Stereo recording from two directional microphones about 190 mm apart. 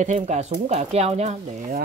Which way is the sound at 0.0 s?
40° right (ahead or behind).